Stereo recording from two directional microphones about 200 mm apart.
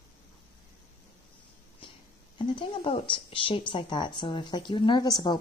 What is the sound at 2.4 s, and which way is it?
Speech, 25° left (ahead or behind).